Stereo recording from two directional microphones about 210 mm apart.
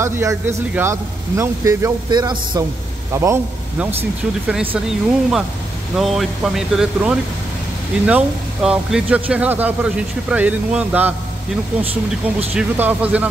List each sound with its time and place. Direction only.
0.0 s a man's voice: 15° right (ahead or behind)
4.5 s speech: 5° right (ahead or behind)
8.6 s a man's voice: 5° right (ahead or behind)
11.8 s speech: 25° right (ahead or behind)
12.5 s a man's voice: 5° right (ahead or behind)